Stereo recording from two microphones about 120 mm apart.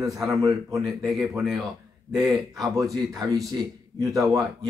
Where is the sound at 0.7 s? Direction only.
Centre (ahead or behind).